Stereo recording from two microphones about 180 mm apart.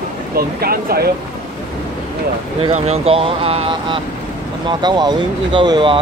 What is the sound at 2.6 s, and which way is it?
Speech, 35° right (ahead or behind).